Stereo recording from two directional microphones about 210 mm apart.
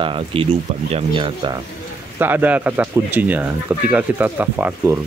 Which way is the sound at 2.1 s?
10° right (ahead or behind).